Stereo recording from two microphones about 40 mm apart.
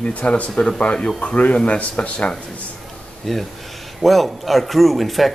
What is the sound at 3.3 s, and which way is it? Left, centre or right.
Speech, centre.